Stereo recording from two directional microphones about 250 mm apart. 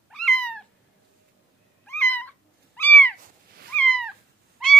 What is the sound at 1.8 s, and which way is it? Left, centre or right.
Cat, centre.